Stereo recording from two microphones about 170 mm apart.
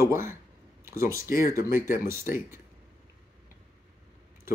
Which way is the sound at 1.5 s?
15° right (ahead or behind).